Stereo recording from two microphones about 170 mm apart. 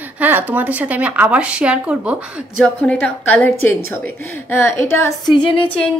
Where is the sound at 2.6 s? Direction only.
5° left (ahead or behind).